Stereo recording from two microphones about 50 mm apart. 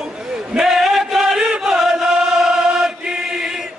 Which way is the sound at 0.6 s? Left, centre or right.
Centre.